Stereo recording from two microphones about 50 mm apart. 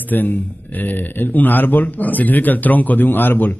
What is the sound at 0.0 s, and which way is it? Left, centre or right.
A man's voice, left.